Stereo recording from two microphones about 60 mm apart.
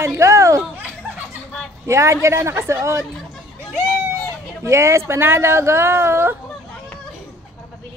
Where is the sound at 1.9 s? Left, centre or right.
Right.